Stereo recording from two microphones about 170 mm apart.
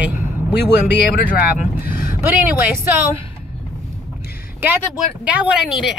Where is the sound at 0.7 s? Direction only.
70° left (ahead or behind).